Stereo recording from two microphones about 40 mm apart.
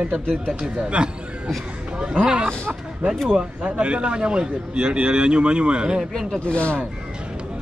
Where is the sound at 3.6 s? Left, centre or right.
Right.